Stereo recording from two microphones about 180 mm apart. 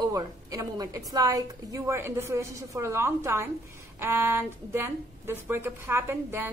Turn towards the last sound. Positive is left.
turn(degrees=-15)  # may be behind; listen again after turning